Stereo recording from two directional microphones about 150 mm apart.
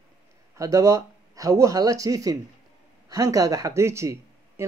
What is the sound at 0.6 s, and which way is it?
Speech, 20° right (ahead or behind).